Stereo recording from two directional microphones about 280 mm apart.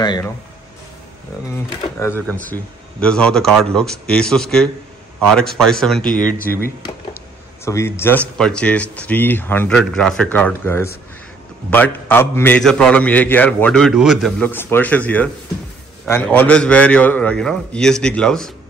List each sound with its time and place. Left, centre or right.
0.0 s speech: centre
1.5 s a man's voice: centre